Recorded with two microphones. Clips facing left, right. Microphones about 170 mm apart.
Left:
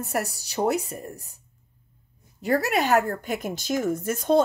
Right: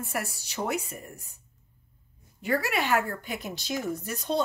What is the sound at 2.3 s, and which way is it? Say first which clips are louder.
Speech: left 5 dB; 40° left (ahead or behind).